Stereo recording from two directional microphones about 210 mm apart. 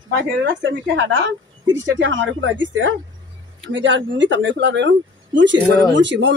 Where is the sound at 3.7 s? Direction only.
60° right (ahead or behind).